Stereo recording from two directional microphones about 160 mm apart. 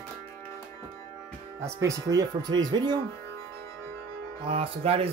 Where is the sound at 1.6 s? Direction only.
20° right (ahead or behind).